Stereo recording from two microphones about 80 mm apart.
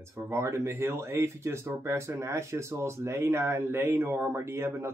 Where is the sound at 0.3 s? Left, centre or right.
Right.